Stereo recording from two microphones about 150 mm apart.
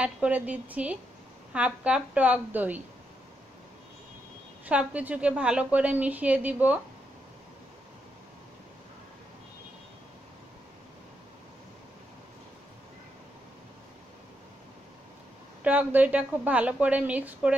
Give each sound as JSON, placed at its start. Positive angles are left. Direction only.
{"t": 0.0, "sound": "a woman's voice", "side_deg": -10}
{"t": 4.6, "sound": "a woman's voice", "side_deg": -10}
{"t": 15.6, "sound": "a woman's voice", "side_deg": -10}